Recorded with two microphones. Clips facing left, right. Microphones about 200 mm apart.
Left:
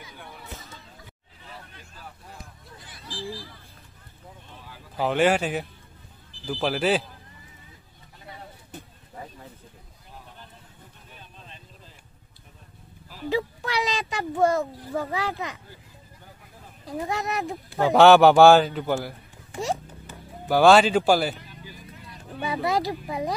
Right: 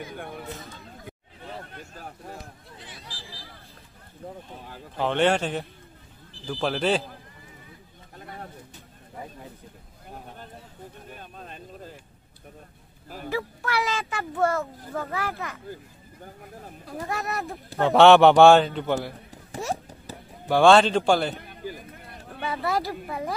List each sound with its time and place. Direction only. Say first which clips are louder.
0.0 s a sound: right 8 dB; 50° right (ahead or behind)
4.9 s a man's voice: left 1 dB; 5° left (ahead or behind)
8.2 s bird: right 3 dB; 50° right (ahead or behind)
11.1 s vehicle: right 6 dB; 50° right (ahead or behind)
13.3 s a child's voice: left 2 dB; 20° left (ahead or behind)
16.8 s a child's voice: left 3 dB; 15° left (ahead or behind)
17.7 s a man's voice: even; centre (ahead or behind)
20.1 s a sound: right 5 dB; 35° right (ahead or behind)
20.4 s a man's voice: even; 5° left (ahead or behind)
21.4 s vehicle: right 7 dB; 55° right (ahead or behind)
22.4 s a child's voice: left 2 dB; 15° left (ahead or behind)